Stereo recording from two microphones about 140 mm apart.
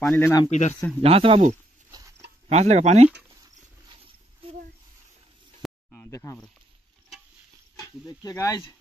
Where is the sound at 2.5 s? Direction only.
50° right (ahead or behind).